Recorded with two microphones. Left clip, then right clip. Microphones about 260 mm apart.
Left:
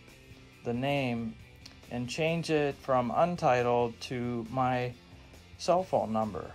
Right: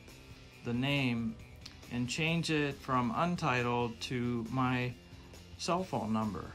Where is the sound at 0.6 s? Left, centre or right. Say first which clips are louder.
Left 3 dB; centre.